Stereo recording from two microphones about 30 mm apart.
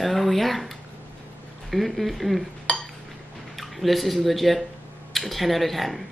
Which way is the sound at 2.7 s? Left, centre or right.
Left.